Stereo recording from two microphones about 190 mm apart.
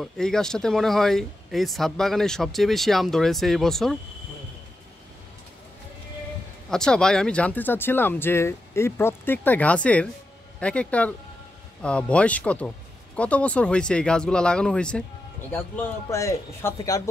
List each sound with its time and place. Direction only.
0.0 s speech: 5° left (ahead or behind)
6.7 s speech: 5° left (ahead or behind)